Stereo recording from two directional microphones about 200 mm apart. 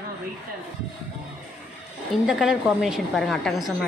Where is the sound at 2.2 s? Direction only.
Centre (ahead or behind).